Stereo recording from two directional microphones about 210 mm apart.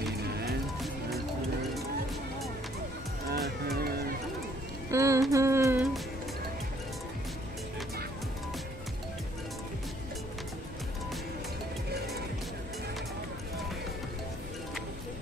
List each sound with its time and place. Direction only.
0.2 s music: 50° right (ahead or behind)
3.4 s music: 50° right (ahead or behind)
4.9 s music: 15° right (ahead or behind)